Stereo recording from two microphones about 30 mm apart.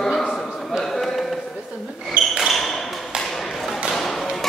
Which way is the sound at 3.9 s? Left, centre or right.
Centre.